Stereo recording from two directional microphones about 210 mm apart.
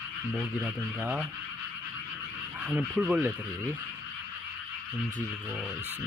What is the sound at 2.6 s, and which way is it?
Goose, 5° right (ahead or behind).